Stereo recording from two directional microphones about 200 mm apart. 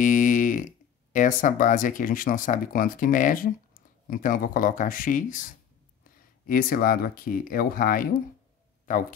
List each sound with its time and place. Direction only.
0.0 s speech: 40° left (ahead or behind)
6.4 s speech: 45° left (ahead or behind)